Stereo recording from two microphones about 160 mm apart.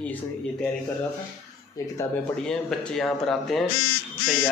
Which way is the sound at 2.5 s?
5° left (ahead or behind).